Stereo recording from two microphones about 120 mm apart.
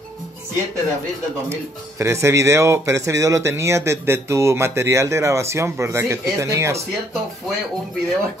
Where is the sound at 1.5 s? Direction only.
25° right (ahead or behind).